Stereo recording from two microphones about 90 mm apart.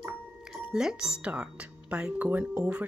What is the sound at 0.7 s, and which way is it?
Speech, 5° right (ahead or behind).